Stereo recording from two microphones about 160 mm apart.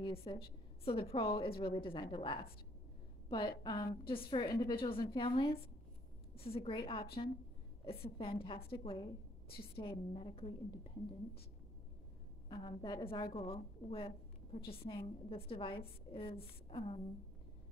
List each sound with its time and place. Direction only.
0.0 s a woman's voice: 35° left (ahead or behind)
12.4 s a woman's voice: 25° left (ahead or behind)